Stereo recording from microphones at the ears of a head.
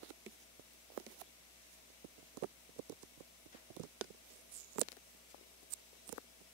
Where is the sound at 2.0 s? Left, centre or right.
Right.